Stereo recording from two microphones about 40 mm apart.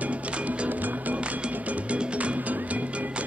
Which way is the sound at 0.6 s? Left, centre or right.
Right.